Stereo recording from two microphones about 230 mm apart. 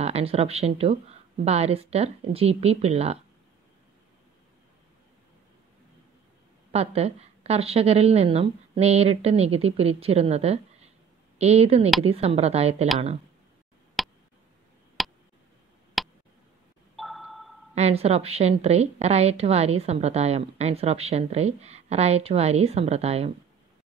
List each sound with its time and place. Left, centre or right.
0.0 s a woman's voice: right
6.7 s a woman's voice: right
14.0 s a sound: centre
16.0 s tick: centre
16.9 s a sound: centre
17.7 s a woman's voice: right